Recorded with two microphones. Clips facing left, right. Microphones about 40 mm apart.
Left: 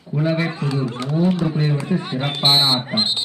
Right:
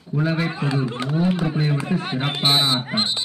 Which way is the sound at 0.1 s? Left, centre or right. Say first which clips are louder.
Left 2 dB; centre.